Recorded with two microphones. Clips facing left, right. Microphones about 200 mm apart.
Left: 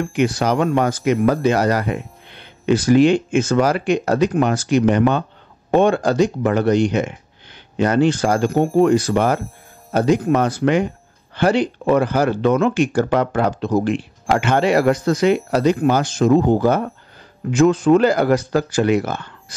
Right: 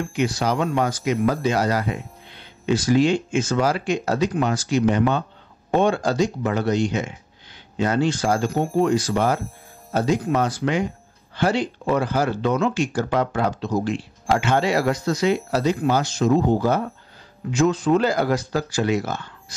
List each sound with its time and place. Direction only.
0.0 s speech: 55° left (ahead or behind)